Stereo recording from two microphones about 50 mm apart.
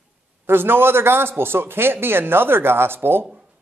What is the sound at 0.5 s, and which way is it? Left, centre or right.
A man's voice, right.